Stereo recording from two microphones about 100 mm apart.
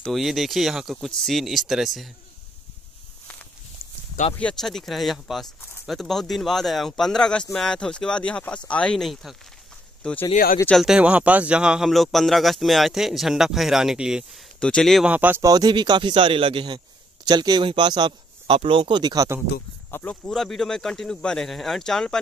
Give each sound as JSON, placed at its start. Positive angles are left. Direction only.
{"t": 0.0, "sound": "speech", "side_deg": 0}
{"t": 4.4, "sound": "speech", "side_deg": 5}
{"t": 10.8, "sound": "speech", "side_deg": -10}
{"t": 14.6, "sound": "speech", "side_deg": 5}
{"t": 15.0, "sound": "speech", "side_deg": -15}
{"t": 15.4, "sound": "speech", "side_deg": -40}
{"t": 18.6, "sound": "speech", "side_deg": -65}
{"t": 19.9, "sound": "speech", "side_deg": 15}
{"t": 20.2, "sound": "speech", "side_deg": 5}